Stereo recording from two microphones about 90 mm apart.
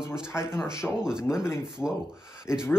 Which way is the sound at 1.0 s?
5° right (ahead or behind).